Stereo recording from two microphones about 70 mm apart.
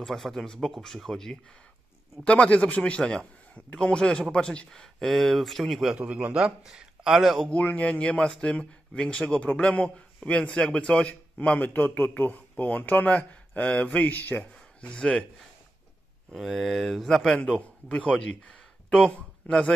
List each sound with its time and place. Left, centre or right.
0.0 s speech: centre
2.2 s a man's voice: centre
5.9 s a man's voice: centre
7.4 s a man's voice: centre
16.3 s speech: centre
17.6 s speech: centre